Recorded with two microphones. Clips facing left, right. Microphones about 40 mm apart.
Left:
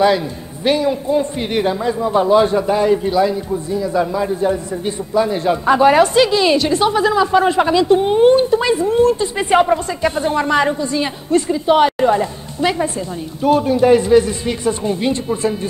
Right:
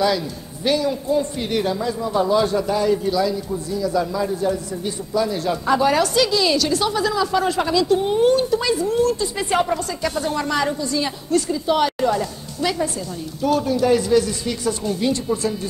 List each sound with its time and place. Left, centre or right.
0.7 s a man's voice: left